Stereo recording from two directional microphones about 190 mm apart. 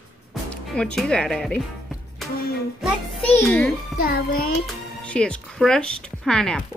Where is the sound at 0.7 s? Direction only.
5° left (ahead or behind).